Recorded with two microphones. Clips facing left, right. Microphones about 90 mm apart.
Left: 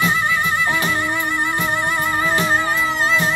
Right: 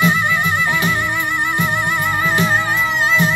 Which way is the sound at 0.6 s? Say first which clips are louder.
Right 1 dB; 30° left (ahead or behind).